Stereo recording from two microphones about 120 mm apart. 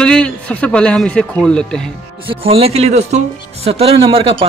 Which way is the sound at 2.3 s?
55° right (ahead or behind).